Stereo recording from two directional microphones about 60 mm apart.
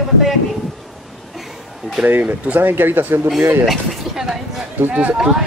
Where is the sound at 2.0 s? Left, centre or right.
Right.